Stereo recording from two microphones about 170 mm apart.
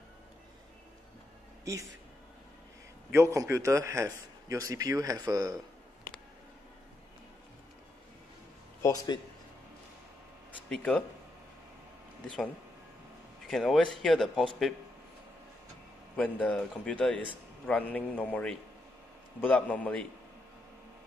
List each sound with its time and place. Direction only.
1.6 s speech: 20° right (ahead or behind)
3.1 s a man's voice: 15° right (ahead or behind)
8.8 s a man's voice: 20° left (ahead or behind)
10.7 s speech: 5° left (ahead or behind)
13.5 s speech: centre (ahead or behind)
16.2 s speech: 10° left (ahead or behind)